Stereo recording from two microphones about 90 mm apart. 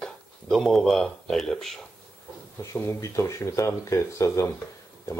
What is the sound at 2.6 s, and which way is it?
Speech, 30° left (ahead or behind).